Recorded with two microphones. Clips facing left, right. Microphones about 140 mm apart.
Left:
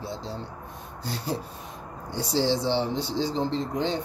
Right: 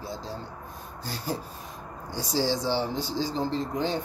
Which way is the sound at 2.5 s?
20° left (ahead or behind).